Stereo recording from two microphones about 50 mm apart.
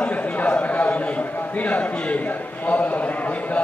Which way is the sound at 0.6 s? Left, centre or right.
Left.